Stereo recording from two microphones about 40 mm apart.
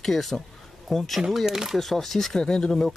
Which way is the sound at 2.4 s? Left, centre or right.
Centre.